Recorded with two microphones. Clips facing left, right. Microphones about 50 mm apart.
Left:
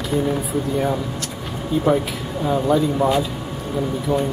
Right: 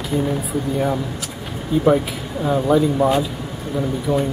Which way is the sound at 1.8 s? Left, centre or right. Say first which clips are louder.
Right 3 dB; centre.